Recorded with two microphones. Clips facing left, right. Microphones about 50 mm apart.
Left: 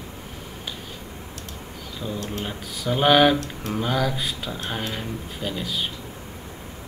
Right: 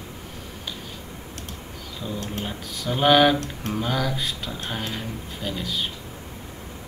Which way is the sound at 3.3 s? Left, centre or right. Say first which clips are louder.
Even; right.